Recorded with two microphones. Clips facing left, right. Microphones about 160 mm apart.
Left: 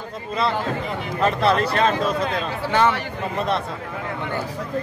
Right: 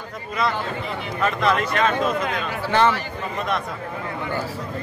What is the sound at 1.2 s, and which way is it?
Speech, 35° left (ahead or behind).